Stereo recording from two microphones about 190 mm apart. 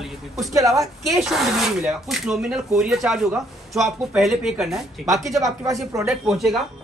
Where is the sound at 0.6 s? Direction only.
15° right (ahead or behind).